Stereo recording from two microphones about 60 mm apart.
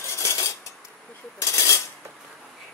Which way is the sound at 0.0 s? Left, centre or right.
Left.